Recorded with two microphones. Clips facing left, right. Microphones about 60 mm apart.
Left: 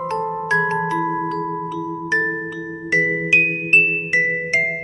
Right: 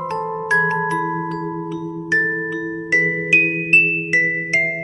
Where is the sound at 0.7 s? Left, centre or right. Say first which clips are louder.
Even; centre.